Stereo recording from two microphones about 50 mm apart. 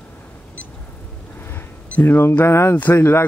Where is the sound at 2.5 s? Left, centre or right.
Left.